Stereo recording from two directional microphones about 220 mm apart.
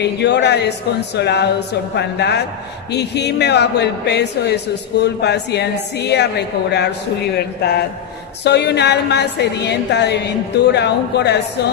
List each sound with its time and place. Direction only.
0.0 s a woman's voice: 50° left (ahead or behind)